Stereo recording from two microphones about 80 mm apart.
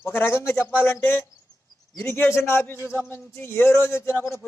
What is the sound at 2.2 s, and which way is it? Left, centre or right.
A man's voice, left.